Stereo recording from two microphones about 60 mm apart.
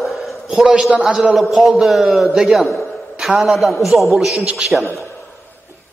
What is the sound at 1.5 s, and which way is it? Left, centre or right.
A man's voice, centre.